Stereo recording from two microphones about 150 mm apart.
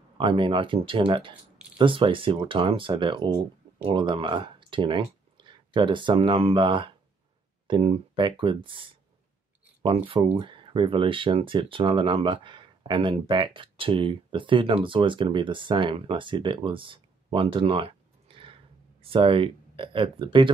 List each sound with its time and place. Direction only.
0.2 s speech: 35° right (ahead or behind)